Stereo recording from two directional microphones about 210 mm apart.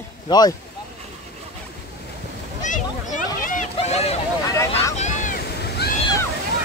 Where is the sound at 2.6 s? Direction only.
35° left (ahead or behind).